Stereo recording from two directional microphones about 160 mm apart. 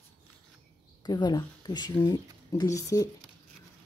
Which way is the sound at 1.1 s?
25° left (ahead or behind).